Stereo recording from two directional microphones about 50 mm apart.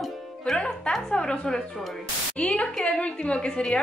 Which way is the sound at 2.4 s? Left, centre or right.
Left.